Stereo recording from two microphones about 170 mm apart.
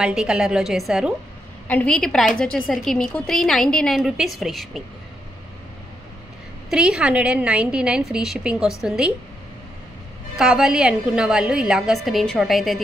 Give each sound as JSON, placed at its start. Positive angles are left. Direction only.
{"t": 0.0, "sound": "a woman's voice", "side_deg": -5}
{"t": 6.7, "sound": "a woman's voice", "side_deg": -5}
{"t": 10.3, "sound": "a woman's voice", "side_deg": 0}